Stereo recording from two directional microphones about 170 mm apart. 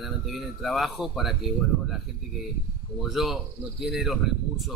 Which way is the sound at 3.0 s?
Centre (ahead or behind).